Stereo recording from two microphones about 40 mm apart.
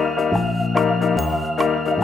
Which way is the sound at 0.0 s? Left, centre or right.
Centre.